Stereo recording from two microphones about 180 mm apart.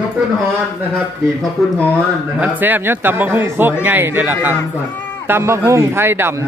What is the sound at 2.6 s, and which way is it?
Speech, 10° right (ahead or behind).